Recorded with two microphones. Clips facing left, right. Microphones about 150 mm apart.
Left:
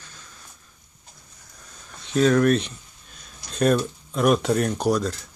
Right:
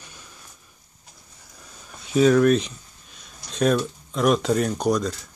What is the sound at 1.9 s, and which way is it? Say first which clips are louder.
Speech: right 2 dB; 5° right (ahead or behind).